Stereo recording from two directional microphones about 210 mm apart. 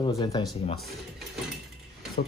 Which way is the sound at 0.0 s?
20° left (ahead or behind).